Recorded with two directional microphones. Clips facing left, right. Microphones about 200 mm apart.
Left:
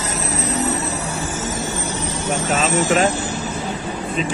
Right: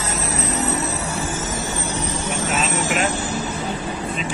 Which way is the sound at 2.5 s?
40° left (ahead or behind).